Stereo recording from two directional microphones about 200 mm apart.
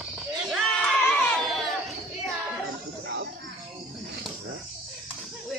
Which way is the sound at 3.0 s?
60° right (ahead or behind).